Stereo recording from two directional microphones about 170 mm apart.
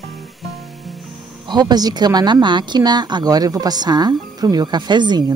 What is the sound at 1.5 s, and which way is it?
Speech, 25° right (ahead or behind).